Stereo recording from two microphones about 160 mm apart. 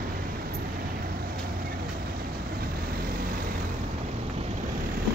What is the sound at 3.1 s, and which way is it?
Vehicle, 65° right (ahead or behind).